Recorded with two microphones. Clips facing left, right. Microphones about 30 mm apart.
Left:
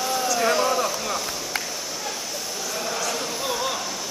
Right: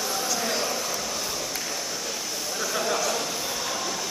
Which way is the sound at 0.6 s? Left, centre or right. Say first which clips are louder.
Left 7 dB; left.